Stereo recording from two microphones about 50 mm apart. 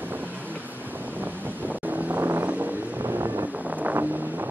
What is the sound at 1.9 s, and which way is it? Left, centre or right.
Vehicle, right.